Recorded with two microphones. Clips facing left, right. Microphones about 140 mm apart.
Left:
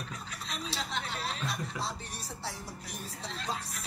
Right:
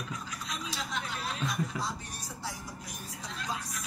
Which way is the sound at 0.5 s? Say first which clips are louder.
Left 1 dB; 30° left (ahead or behind).